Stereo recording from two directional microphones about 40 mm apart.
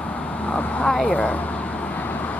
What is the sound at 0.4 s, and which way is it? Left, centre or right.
Vehicle, left.